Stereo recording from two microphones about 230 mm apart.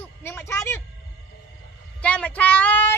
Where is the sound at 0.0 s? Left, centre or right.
Centre.